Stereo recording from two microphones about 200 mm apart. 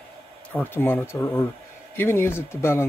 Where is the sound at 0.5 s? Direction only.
10° left (ahead or behind).